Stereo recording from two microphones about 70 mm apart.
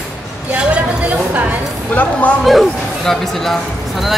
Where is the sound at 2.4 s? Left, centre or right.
Centre.